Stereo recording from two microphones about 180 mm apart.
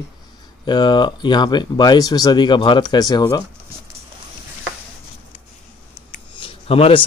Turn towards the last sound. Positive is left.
turn(degrees=30)  # may be behind; listen again after turning